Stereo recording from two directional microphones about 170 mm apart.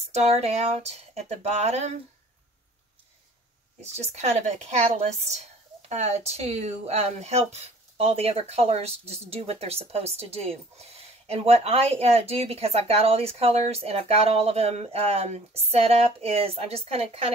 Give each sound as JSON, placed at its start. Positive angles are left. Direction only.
{"t": 0.0, "sound": "a woman's voice", "side_deg": -40}
{"t": 3.8, "sound": "a woman's voice", "side_deg": -40}